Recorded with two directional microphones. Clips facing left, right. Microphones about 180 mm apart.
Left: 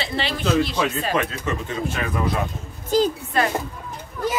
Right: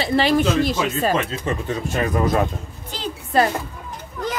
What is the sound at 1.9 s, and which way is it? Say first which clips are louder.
Speech: right 7 dB; 45° right (ahead or behind).